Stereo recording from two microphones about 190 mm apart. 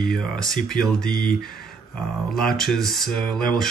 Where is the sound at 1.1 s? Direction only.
50° left (ahead or behind).